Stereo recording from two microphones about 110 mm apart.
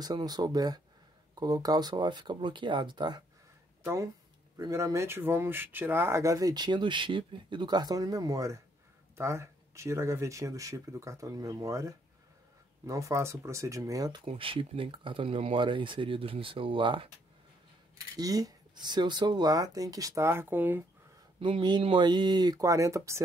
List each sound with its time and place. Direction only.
0.0 s speech: 35° right (ahead or behind)
3.8 s speech: 25° right (ahead or behind)
14.2 s speech: 55° right (ahead or behind)
18.1 s speech: 35° right (ahead or behind)
21.4 s speech: 45° right (ahead or behind); by 23.2 s 25° right (ahead or behind)